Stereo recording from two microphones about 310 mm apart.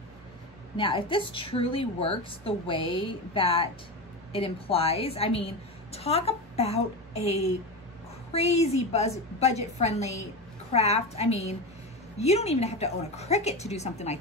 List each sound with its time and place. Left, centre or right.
0.7 s a woman's voice: centre